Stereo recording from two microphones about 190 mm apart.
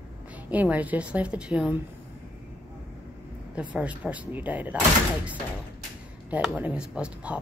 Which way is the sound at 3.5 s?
5° right (ahead or behind).